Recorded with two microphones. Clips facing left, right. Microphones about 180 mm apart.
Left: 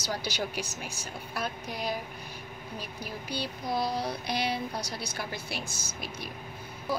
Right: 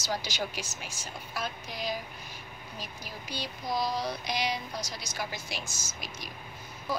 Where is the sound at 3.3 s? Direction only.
60° left (ahead or behind).